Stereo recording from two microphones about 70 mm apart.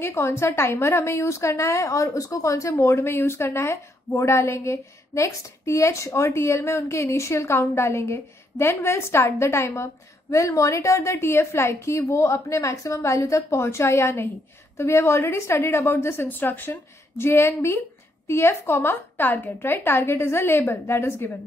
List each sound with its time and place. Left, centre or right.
0.0 s a woman's voice: left
17.2 s speech: left